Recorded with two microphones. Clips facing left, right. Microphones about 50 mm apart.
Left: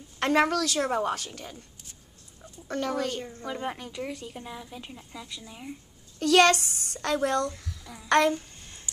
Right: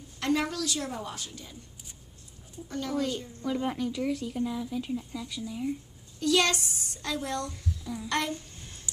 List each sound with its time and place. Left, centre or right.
0.2 s a child's voice: left
2.7 s a child's voice: left
3.4 s speech: left
6.1 s a child's voice: left